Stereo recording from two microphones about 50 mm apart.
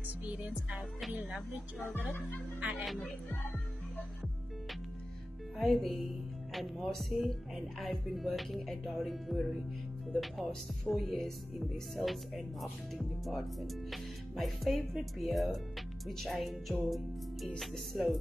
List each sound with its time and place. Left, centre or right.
0.2 s speech: right
2.7 s speech: centre
5.6 s speech: centre